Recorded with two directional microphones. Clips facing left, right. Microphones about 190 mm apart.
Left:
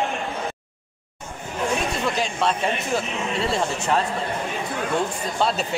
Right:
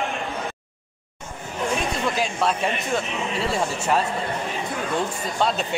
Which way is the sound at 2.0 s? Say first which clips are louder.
Even; centre (ahead or behind).